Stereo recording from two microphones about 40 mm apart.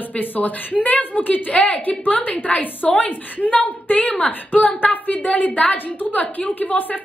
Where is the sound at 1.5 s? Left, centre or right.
Left.